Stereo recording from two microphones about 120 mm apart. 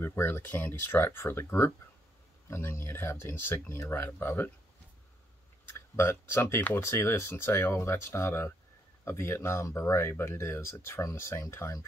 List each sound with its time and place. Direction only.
0.0 s speech: 20° left (ahead or behind)
5.7 s speech: 20° left (ahead or behind)